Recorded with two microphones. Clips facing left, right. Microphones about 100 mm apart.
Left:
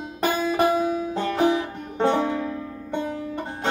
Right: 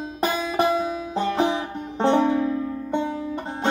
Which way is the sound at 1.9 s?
25° right (ahead or behind).